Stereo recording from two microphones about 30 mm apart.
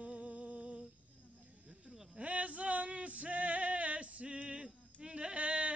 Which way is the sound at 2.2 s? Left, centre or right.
Right.